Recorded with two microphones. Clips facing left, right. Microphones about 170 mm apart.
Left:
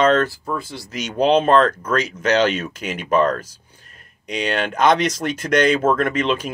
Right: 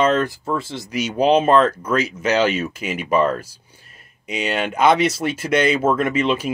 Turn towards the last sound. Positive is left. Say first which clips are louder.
# right 1 dB
turn(degrees=-10)  # may be behind; listen again after turning